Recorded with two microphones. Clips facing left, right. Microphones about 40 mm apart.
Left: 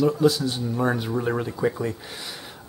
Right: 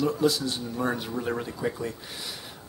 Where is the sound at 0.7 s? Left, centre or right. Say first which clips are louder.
Left 5 dB; centre.